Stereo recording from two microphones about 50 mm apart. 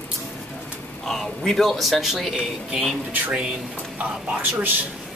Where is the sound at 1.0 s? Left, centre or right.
Centre.